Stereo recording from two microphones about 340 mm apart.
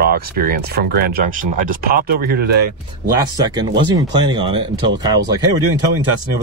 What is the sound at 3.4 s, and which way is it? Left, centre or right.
Speech, centre.